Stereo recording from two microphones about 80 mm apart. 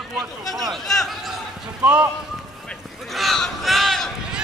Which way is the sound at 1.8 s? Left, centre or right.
Centre.